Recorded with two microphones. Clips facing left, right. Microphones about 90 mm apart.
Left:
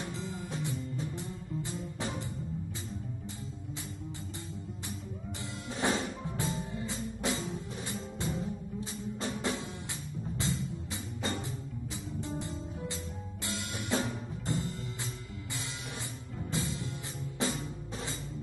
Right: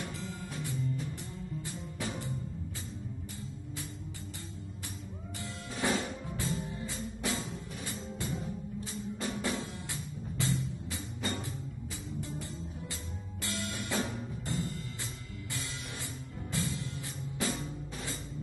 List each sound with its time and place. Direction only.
0.0 s music: 20° left (ahead or behind)
5.4 s music: 25° left (ahead or behind)
13.4 s music: 20° left (ahead or behind)
16.4 s music: 20° left (ahead or behind)